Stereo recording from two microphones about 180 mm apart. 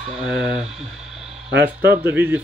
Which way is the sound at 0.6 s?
35° right (ahead or behind).